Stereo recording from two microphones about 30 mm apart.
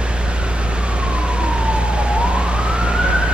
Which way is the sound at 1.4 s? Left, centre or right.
Right.